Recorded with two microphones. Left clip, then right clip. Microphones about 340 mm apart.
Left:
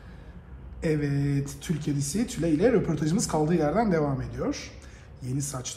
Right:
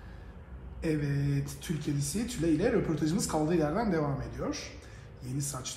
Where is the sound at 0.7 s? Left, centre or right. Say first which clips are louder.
Left 5 dB; left.